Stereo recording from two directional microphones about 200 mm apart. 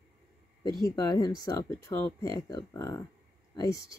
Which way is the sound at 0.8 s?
20° left (ahead or behind).